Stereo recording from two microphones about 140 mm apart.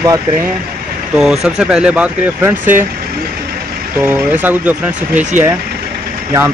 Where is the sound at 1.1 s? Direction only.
Centre (ahead or behind).